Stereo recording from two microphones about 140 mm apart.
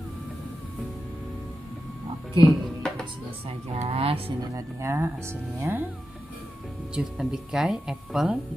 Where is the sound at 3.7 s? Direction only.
45° right (ahead or behind).